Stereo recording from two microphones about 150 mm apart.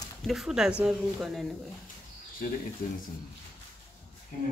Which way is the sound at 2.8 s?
65° left (ahead or behind).